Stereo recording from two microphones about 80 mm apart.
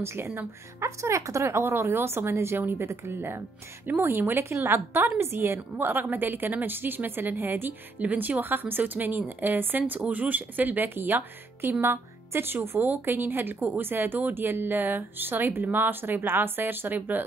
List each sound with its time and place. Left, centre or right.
0.0 s a woman's voice: right